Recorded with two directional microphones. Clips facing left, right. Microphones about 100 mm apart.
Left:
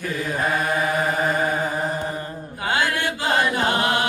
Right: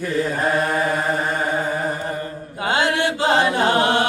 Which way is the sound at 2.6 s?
25° right (ahead or behind).